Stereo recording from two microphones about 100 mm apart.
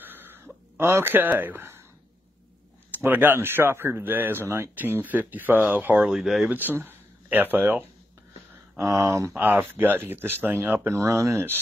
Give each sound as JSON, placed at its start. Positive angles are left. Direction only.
{"t": 0.0, "sound": "a sound", "side_deg": -20}
{"t": 0.7, "sound": "speech", "side_deg": -25}
{"t": 3.0, "sound": "speech", "side_deg": -20}
{"t": 6.0, "sound": "speech", "side_deg": -5}
{"t": 6.5, "sound": "a sound", "side_deg": -20}
{"t": 7.5, "sound": "speech", "side_deg": -15}
{"t": 8.7, "sound": "speech", "side_deg": -35}
{"t": 9.4, "sound": "speech", "side_deg": -20}